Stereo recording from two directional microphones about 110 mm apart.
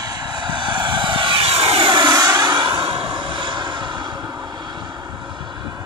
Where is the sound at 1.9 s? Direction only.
40° right (ahead or behind).